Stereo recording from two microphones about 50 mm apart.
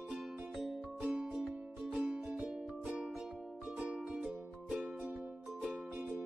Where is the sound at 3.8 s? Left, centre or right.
Right.